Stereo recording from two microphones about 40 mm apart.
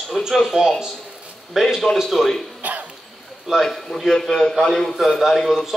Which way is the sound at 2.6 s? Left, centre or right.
Right.